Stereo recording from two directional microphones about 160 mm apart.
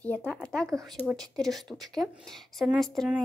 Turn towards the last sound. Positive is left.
turn(degrees=0)  # may be behind; listen again after turning